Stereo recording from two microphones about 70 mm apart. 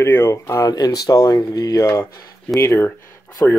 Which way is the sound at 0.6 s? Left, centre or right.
Left.